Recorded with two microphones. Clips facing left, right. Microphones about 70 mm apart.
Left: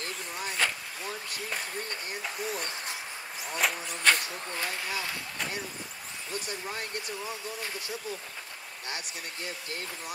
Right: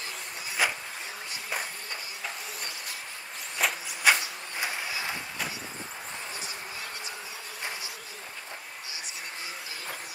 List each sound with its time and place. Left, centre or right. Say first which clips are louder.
0.0 s a sound: left 3 dB; left
3.6 s vehicle: even; centre
4.0 s speech: right 2 dB; centre
8.8 s speech: left 7 dB; left